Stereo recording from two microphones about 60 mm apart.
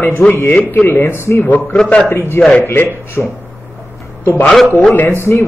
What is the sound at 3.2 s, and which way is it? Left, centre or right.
Speech, left.